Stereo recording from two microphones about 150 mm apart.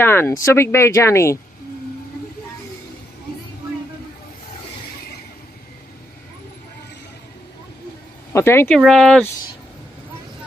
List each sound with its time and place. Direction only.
0.0 s speech: 15° left (ahead or behind)
8.3 s speech: 15° left (ahead or behind)
8.7 s speech: centre (ahead or behind)